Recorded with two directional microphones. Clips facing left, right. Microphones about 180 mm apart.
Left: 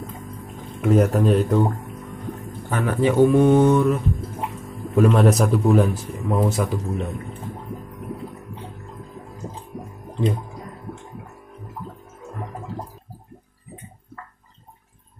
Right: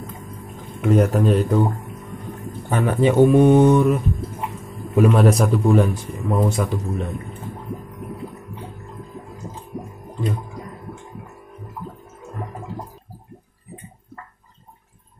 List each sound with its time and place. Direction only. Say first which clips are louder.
0.7 s speech: even; centre (ahead or behind)
2.7 s speech: right 2 dB; 20° right (ahead or behind)
4.9 s speech: right 1 dB; 5° right (ahead or behind)